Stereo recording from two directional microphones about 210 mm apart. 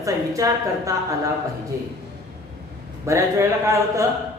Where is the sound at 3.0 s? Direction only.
15° right (ahead or behind).